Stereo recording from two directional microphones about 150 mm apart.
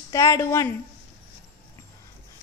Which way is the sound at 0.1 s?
20° left (ahead or behind).